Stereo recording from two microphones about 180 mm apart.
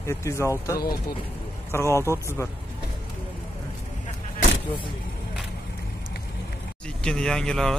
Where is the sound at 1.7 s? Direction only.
15° left (ahead or behind).